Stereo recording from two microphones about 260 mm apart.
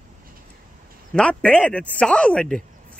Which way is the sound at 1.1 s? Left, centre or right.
Centre.